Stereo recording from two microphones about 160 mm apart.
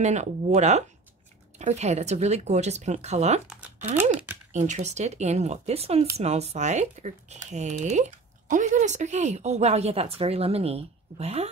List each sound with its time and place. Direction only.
0.0 s speech: 45° right (ahead or behind)
3.9 s speech: 10° right (ahead or behind)
4.5 s speech: 45° right (ahead or behind)